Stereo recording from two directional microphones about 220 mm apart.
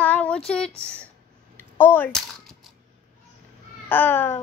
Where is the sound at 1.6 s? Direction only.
10° left (ahead or behind).